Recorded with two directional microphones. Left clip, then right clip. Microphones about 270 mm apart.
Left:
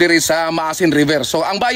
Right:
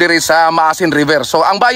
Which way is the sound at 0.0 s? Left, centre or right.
Centre.